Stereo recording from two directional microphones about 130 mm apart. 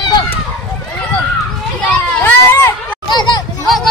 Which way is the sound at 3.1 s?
30° left (ahead or behind).